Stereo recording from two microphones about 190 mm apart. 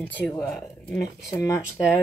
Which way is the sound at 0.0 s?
10° left (ahead or behind).